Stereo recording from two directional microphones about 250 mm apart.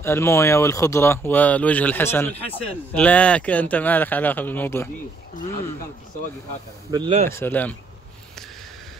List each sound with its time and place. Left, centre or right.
0.0 s speech: centre
6.9 s speech: centre
7.2 s speech: centre